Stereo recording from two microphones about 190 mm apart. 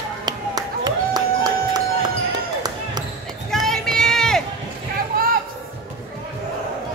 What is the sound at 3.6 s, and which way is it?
Vehicle, 5° left (ahead or behind).